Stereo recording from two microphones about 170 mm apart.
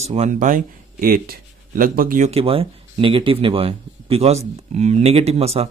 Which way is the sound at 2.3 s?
35° right (ahead or behind).